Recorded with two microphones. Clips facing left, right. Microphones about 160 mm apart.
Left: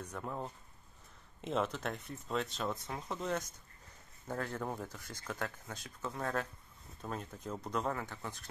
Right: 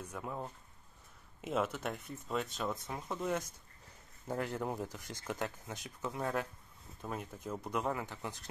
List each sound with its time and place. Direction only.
0.0 s speech: 5° right (ahead or behind)